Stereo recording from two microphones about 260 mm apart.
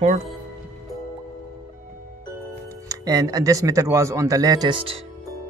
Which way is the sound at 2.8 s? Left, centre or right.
Centre.